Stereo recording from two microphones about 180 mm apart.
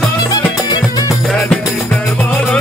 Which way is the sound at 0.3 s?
20° left (ahead or behind).